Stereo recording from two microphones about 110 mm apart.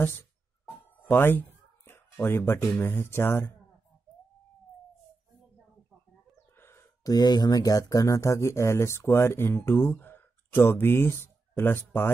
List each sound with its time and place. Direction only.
1.0 s speech: 20° left (ahead or behind)
6.6 s speech: 25° left (ahead or behind)